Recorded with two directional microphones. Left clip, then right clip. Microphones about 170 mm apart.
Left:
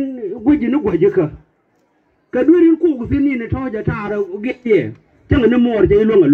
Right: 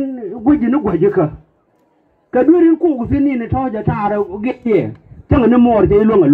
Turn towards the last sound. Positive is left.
turn(degrees=-15)  # may be behind; listen again after turning